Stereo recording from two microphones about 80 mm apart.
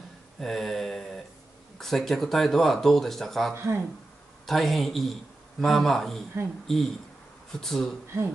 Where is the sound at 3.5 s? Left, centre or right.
Right.